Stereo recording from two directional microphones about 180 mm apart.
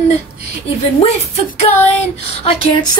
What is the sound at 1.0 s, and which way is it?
Child singing, 35° left (ahead or behind).